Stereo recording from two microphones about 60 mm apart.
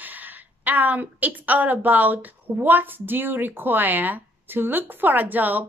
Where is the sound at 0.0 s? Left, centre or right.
Right.